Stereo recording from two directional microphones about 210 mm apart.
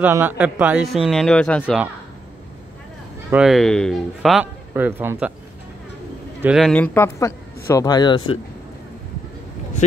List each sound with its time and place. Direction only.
0.0 s a man's voice: 10° right (ahead or behind)
3.3 s a man's voice: 5° right (ahead or behind)
6.4 s a man's voice: centre (ahead or behind); by 8.4 s 20° left (ahead or behind)